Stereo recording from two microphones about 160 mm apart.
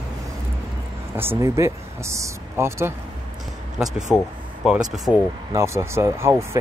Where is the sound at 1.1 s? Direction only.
15° right (ahead or behind).